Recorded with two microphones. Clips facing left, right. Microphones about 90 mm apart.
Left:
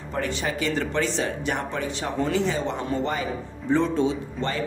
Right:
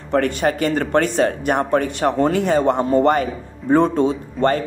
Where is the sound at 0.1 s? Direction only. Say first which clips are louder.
Right 10 dB; 55° right (ahead or behind).